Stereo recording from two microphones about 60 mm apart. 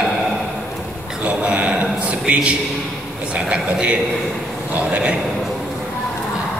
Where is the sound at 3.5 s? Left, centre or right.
Centre.